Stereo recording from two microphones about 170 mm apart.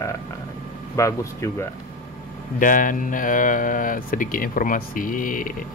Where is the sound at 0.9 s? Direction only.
20° left (ahead or behind).